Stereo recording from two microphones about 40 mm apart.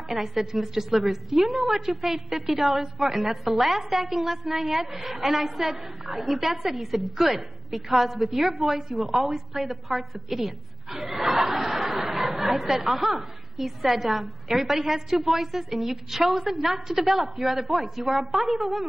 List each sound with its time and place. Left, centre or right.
0.1 s a woman's voice: centre